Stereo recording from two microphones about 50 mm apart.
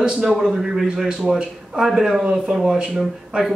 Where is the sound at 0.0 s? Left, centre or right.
Centre.